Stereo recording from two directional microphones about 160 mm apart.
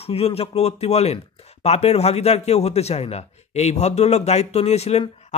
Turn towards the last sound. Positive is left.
turn(degrees=40)  # may be behind; listen again after turning